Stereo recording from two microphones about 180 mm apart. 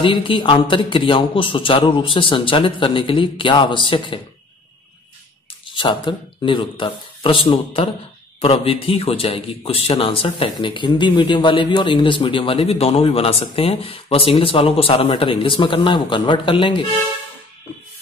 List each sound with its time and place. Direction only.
0.0 s a man's voice: 30° left (ahead or behind)
5.7 s a man's voice: 25° left (ahead or behind)